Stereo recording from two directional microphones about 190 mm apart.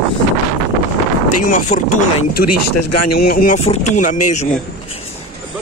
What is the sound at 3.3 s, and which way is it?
Speech, 50° left (ahead or behind).